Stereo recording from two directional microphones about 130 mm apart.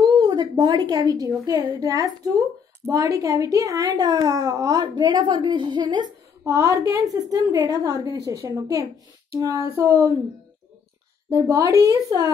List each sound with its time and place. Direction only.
0.0 s a woman's voice: 35° right (ahead or behind)
6.4 s a woman's voice: 25° right (ahead or behind)
11.3 s a woman's voice: 25° right (ahead or behind)